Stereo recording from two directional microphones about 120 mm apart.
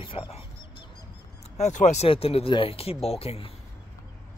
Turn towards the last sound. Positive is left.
turn(degrees=50)  # may be behind; listen again after turning